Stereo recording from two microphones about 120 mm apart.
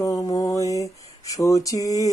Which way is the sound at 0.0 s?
25° left (ahead or behind).